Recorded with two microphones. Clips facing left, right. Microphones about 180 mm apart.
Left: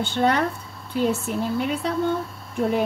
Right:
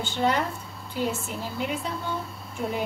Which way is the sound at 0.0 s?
65° left (ahead or behind).